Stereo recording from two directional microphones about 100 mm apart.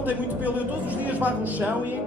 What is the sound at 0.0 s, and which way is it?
Speech, 15° right (ahead or behind).